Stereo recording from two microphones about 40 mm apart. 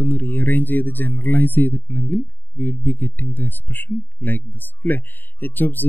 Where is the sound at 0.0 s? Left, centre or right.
Left.